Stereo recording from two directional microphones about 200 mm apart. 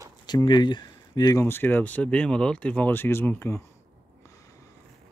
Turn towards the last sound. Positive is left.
turn(degrees=10)  # may be behind; listen again after turning